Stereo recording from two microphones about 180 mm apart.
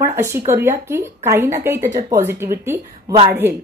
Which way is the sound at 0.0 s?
15° right (ahead or behind).